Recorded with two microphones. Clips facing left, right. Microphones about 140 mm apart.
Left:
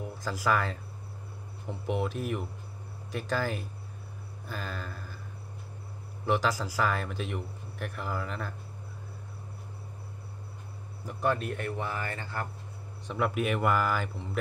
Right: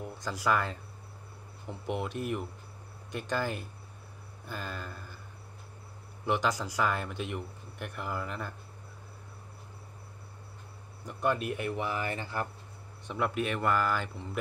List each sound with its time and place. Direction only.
0.0 s speech: 5° left (ahead or behind)
6.2 s speech: centre (ahead or behind)
11.1 s speech: centre (ahead or behind)
11.3 s speech: 10° right (ahead or behind)
13.0 s speech: centre (ahead or behind)